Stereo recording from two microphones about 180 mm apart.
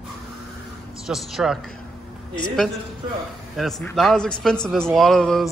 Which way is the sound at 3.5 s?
Centre (ahead or behind).